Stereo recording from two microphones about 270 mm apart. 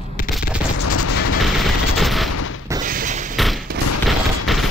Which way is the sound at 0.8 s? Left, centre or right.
Left.